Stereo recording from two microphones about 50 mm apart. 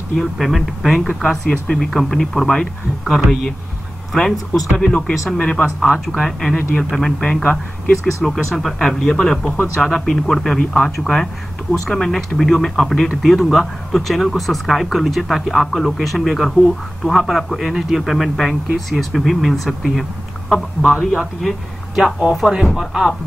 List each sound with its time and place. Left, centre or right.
0.1 s speech: centre
20.4 s speech: centre
21.4 s speech: centre